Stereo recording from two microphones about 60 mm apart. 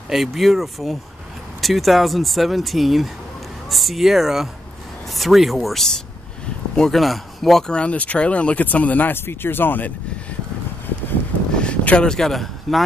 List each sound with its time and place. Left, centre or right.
0.1 s speech: centre
7.7 s speech: left
11.5 s a sound: centre
12.1 s speech: centre